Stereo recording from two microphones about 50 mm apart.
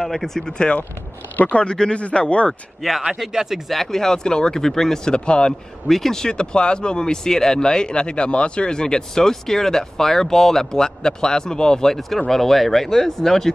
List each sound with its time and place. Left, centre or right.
0.0 s speech: centre
1.3 s speech: left
3.2 s speech: centre
5.9 s speech: centre